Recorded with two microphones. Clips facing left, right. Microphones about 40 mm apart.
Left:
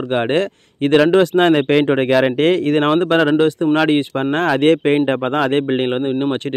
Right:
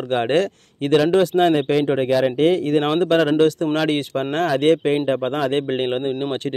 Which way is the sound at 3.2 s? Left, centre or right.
Left.